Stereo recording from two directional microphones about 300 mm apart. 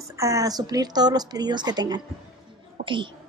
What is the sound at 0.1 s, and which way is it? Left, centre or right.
A woman's voice, centre.